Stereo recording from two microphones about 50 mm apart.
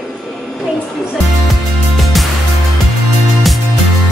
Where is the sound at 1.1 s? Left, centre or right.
Centre.